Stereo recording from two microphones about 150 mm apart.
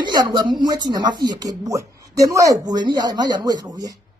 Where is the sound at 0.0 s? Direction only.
30° right (ahead or behind).